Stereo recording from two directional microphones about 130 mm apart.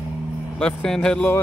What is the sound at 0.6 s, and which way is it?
Speech, 5° left (ahead or behind).